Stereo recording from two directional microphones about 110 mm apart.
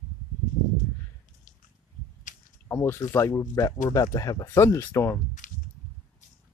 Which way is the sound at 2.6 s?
20° left (ahead or behind).